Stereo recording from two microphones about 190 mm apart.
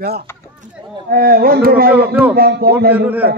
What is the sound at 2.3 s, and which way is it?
Speech, 50° right (ahead or behind).